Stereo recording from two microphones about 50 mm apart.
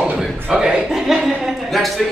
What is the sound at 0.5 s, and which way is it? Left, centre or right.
Speech, centre.